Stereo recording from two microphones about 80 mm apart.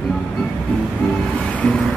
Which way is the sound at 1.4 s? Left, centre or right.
Centre.